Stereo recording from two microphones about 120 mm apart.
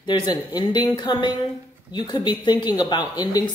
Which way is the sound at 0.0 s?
35° left (ahead or behind).